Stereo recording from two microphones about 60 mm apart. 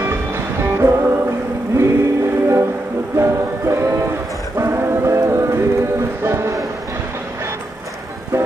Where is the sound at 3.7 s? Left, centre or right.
Right.